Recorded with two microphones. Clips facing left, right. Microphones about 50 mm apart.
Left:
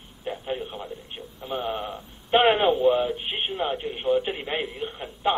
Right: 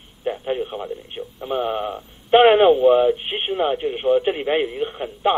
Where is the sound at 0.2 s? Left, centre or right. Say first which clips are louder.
Right 7 dB; right.